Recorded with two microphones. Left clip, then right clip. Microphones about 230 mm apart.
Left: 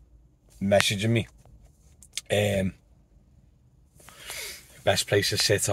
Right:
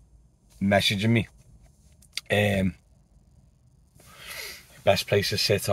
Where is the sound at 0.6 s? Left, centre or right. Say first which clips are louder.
Even; centre.